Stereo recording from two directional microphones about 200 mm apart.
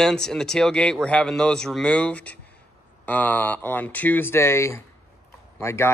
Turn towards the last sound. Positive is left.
turn(degrees=15)  # may be behind; listen again after turning